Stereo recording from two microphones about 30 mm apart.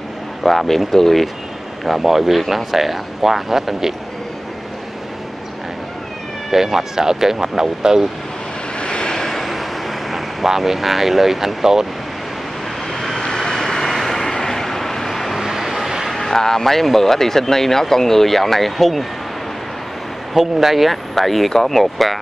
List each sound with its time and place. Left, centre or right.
0.4 s speech: centre
1.9 s speech: centre
6.5 s speech: centre
8.7 s vehicle: left
9.4 s vehicle: centre
12.9 s vehicle: centre
13.8 s vehicle: centre
15.3 s vehicle: centre
16.2 s speech: centre
20.3 s speech: centre